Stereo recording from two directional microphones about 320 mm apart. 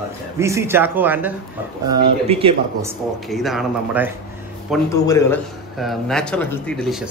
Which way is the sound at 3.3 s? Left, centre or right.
Centre.